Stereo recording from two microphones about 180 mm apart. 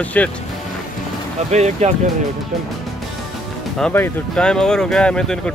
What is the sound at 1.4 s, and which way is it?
Speech, 40° right (ahead or behind).